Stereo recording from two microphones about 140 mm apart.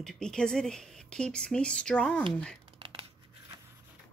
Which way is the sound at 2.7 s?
40° right (ahead or behind).